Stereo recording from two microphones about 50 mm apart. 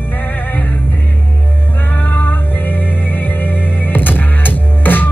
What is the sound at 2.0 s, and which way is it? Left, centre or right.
Music, left.